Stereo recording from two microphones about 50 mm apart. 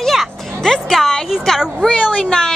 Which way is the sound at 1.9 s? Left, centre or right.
Centre.